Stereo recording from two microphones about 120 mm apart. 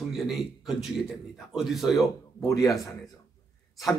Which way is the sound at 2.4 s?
30° left (ahead or behind).